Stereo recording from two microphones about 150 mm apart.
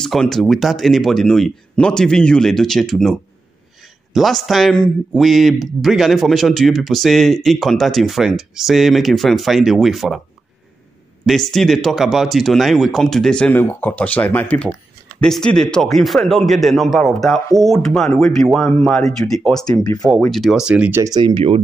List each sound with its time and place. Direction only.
0.0 s speech: 5° left (ahead or behind)
11.2 s speech: centre (ahead or behind)
21.0 s speech: 25° right (ahead or behind)